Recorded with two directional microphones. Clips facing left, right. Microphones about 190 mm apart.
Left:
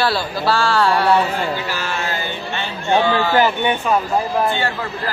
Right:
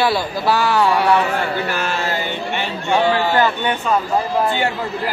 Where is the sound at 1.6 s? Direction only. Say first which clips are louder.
Right 3 dB; 55° right (ahead or behind).